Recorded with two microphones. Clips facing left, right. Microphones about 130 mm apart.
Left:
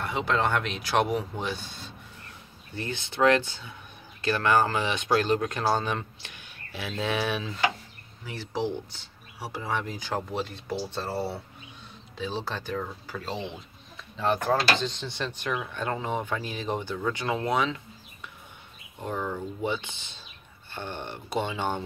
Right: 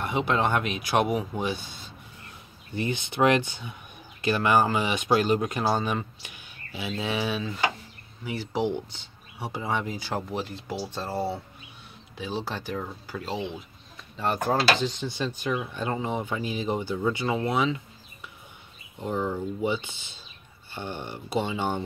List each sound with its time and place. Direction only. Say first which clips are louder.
0.0 s speech: right 1 dB; 15° right (ahead or behind)
2.7 s speech: right 5 dB; 15° right (ahead or behind)
8.3 s speech: right 3 dB; 15° right (ahead or behind)
12.2 s speech: even; 15° right (ahead or behind)
19.0 s speech: right 3 dB; 15° right (ahead or behind)